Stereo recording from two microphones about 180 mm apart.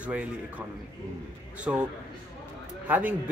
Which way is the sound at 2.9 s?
10° right (ahead or behind).